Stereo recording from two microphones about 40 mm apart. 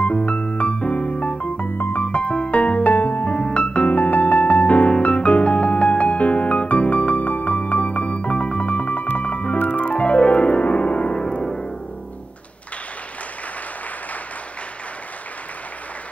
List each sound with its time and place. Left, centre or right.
0.0 s music: left
1.7 s music: left
2.0 s music: left
3.3 s music: left
3.9 s music: left
11.1 s music: left